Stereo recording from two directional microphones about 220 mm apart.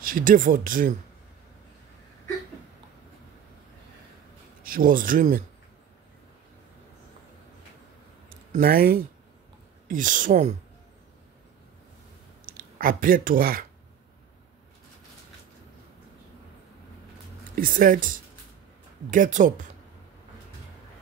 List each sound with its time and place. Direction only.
0.0 s speech: 40° right (ahead or behind)
4.6 s speech: 40° right (ahead or behind)
8.3 s speech: 40° right (ahead or behind)
12.4 s speech: 40° right (ahead or behind)
17.6 s speech: 40° right (ahead or behind)